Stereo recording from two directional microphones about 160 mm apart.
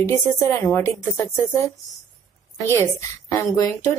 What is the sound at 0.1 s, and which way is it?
A woman's voice, 15° left (ahead or behind).